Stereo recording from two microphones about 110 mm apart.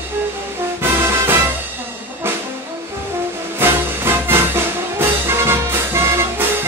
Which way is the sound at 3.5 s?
20° right (ahead or behind).